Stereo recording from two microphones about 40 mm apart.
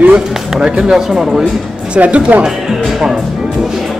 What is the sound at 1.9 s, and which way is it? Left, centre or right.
Speech, right.